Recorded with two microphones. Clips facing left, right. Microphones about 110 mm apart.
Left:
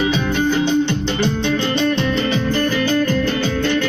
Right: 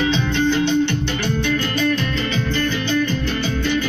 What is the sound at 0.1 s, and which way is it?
Music, 10° left (ahead or behind).